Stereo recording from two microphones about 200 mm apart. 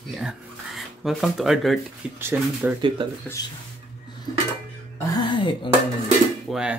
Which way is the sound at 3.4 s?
20° left (ahead or behind).